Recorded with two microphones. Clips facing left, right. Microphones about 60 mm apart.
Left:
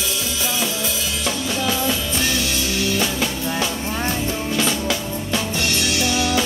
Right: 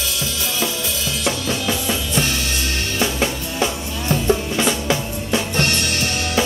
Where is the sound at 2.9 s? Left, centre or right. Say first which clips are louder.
Right 1 dB; right.